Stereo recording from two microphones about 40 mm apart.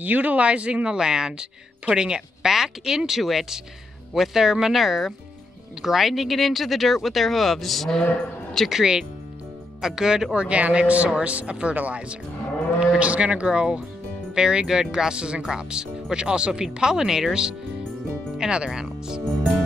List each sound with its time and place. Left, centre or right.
0.0 s speech: right
0.9 s speech: centre
8.6 s speech: centre
10.3 s speech: right
16.8 s speech: centre
18.7 s speech: centre